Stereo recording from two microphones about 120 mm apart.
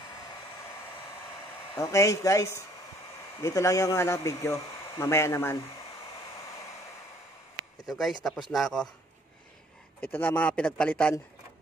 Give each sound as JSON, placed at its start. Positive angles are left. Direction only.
{"t": 1.8, "sound": "speech", "side_deg": 25}
{"t": 7.8, "sound": "speech", "side_deg": 0}
{"t": 9.9, "sound": "a man's voice", "side_deg": 15}